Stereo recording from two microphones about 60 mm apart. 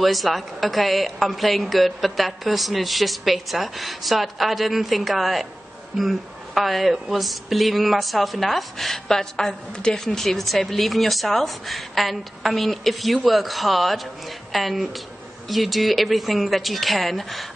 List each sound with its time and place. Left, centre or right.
0.0 s a woman's voice: centre